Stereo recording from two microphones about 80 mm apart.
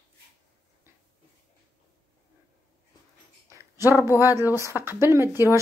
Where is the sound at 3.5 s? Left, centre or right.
Right.